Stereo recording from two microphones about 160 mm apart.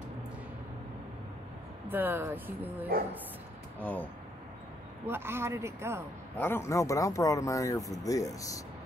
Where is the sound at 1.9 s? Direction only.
10° right (ahead or behind).